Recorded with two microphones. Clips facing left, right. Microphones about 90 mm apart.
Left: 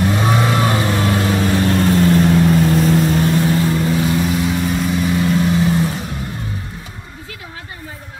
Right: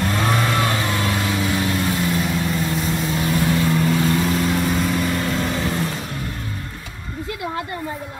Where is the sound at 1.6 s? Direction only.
60° left (ahead or behind).